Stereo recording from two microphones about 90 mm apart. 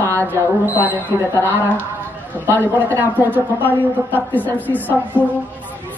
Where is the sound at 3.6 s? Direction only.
20° left (ahead or behind).